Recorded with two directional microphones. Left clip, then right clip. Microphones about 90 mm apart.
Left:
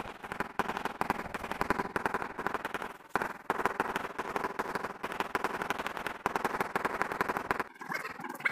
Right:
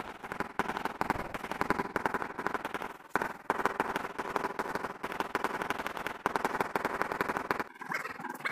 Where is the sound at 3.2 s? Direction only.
15° right (ahead or behind).